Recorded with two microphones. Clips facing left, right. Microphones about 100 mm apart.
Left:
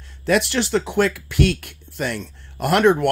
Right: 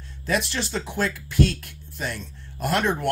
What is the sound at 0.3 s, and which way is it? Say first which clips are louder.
Speech: left 7 dB; 65° left (ahead or behind).